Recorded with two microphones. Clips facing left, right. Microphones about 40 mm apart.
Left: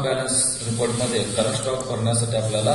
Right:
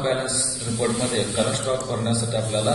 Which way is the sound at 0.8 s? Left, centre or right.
Right.